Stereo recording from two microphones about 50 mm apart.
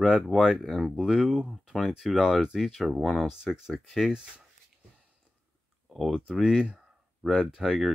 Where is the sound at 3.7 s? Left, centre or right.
Centre.